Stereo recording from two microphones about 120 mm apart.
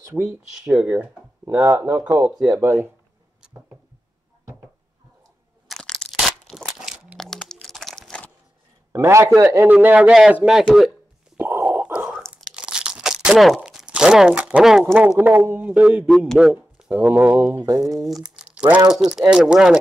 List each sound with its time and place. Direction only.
0.1 s a man's voice: 20° right (ahead or behind)
2.0 s speech: 25° right (ahead or behind)
5.7 s crunch: 5° left (ahead or behind)
8.9 s a man's voice: 25° right (ahead or behind); by 10.6 s 5° right (ahead or behind)
11.3 s a sound: 15° right (ahead or behind)
12.4 s tearing: 5° right (ahead or behind)
15.0 s a man's voice: 15° right (ahead or behind)
16.1 s a man's voice: centre (ahead or behind)
17.6 s speech: 30° right (ahead or behind)
17.9 s speech: centre (ahead or behind)